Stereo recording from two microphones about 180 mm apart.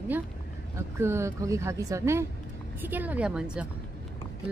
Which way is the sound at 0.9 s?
15° right (ahead or behind).